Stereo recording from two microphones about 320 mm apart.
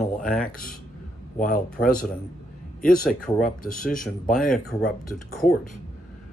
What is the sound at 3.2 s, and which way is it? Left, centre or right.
Speech, left.